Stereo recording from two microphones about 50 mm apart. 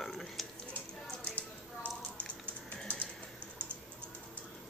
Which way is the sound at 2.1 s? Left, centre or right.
Left.